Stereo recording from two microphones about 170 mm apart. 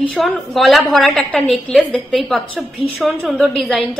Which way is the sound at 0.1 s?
Centre (ahead or behind).